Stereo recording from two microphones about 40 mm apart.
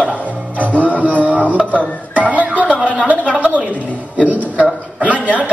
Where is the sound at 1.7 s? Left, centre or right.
Right.